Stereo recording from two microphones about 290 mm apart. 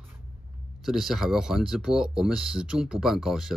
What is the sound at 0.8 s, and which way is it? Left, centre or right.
Speech, centre.